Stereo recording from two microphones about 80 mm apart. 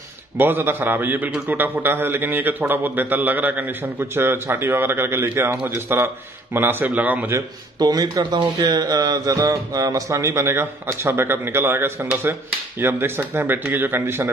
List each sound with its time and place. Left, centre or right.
0.4 s a man's voice: right
7.8 s speech: right
8.5 s music: right
9.5 s a man's voice: right